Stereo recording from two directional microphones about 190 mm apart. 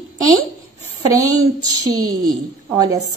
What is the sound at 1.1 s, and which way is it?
A woman's voice, 20° right (ahead or behind).